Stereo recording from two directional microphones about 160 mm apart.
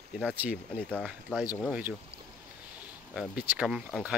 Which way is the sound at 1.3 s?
5° left (ahead or behind).